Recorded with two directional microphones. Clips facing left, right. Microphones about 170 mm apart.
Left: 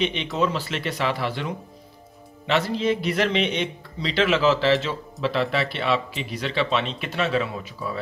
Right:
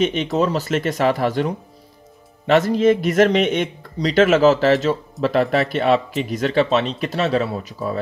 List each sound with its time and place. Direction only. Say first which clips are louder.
0.0 s a man's voice: right 5 dB; 45° right (ahead or behind)